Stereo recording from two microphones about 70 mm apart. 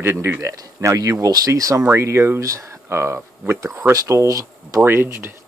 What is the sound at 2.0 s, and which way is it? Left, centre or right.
Speech, right.